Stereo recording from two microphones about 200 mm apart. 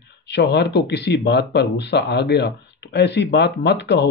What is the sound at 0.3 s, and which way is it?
Speech, 55° left (ahead or behind).